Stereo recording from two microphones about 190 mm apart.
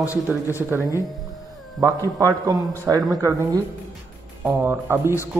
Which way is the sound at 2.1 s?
20° right (ahead or behind).